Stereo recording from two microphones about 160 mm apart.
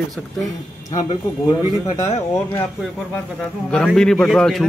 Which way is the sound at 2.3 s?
15° left (ahead or behind).